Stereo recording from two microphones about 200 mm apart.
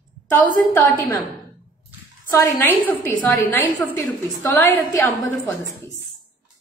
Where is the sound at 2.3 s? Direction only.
10° left (ahead or behind).